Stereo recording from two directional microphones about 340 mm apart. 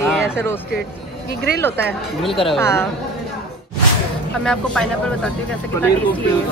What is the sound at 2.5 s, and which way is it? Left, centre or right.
Speech, centre.